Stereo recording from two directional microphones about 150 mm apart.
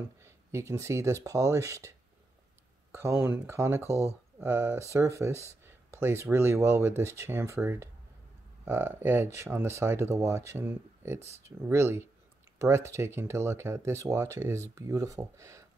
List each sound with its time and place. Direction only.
0.2 s speech: 20° right (ahead or behind)